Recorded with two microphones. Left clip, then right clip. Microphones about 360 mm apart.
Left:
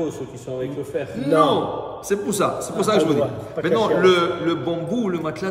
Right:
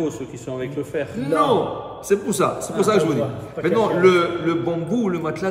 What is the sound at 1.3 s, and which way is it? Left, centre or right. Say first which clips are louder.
A man's voice: left 1 dB; centre.